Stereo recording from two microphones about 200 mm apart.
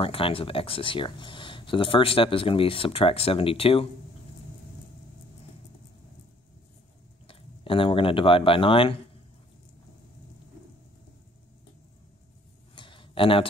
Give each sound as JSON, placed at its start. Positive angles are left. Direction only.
{"t": 0.0, "sound": "speech", "side_deg": 25}
{"t": 7.2, "sound": "speech", "side_deg": 25}
{"t": 12.7, "sound": "a sound", "side_deg": 25}